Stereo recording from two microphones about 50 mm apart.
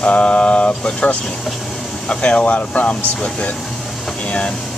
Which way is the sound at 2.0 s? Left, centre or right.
Left.